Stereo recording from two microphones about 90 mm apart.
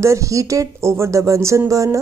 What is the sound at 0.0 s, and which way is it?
A woman's voice, 35° right (ahead or behind).